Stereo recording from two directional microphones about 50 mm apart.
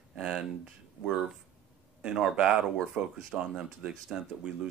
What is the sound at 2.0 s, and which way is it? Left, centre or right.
Speech, centre.